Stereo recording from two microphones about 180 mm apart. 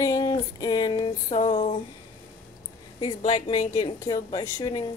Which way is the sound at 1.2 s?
40° left (ahead or behind).